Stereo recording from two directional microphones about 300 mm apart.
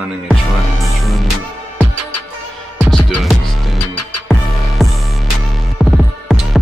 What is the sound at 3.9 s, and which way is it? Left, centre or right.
Music, left.